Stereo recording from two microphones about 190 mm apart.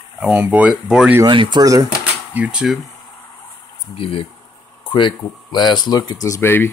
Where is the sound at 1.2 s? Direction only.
25° right (ahead or behind).